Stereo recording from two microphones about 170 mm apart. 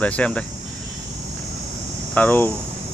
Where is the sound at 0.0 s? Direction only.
5° left (ahead or behind).